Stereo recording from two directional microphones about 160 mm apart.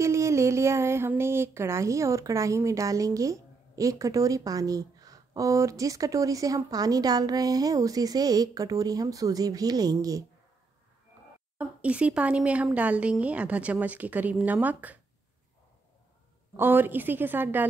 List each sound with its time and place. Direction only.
0.0 s speech: 20° right (ahead or behind)
11.5 s speech: 5° right (ahead or behind)
16.5 s speech: 10° right (ahead or behind)